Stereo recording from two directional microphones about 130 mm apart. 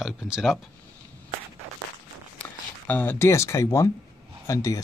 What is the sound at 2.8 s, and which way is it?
Speech, 15° left (ahead or behind).